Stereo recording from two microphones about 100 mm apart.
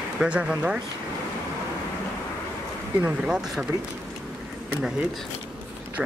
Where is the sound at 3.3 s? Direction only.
5° right (ahead or behind).